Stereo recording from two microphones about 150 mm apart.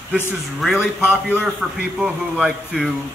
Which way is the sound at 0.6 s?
10° right (ahead or behind).